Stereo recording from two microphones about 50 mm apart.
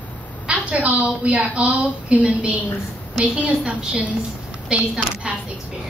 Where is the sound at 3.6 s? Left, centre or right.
Right.